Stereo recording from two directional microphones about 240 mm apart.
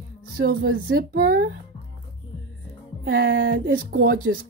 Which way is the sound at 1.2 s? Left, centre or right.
Right.